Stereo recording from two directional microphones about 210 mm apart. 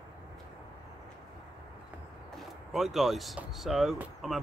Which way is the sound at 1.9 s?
5° right (ahead or behind).